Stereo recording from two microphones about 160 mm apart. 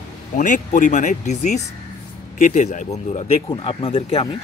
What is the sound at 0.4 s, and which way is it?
Speech, 55° left (ahead or behind).